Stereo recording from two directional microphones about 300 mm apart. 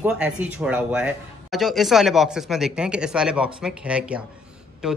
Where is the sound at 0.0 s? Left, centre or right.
Centre.